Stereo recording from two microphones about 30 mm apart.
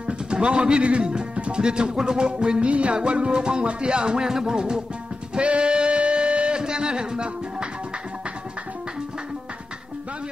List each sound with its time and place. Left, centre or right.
0.3 s a man's voice: right
1.6 s music: right
4.3 s music: centre
4.6 s music: right